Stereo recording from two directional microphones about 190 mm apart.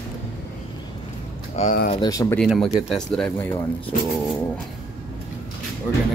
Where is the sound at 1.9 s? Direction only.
20° left (ahead or behind).